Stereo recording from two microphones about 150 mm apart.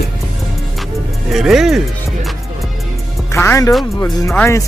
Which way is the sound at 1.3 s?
Centre (ahead or behind).